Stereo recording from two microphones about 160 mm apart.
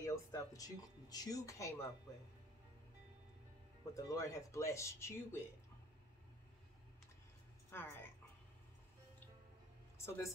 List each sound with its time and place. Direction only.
0.0 s speech: 20° left (ahead or behind)
3.9 s speech: 20° left (ahead or behind)
7.7 s a woman's voice: 15° left (ahead or behind)
9.9 s speech: 15° left (ahead or behind)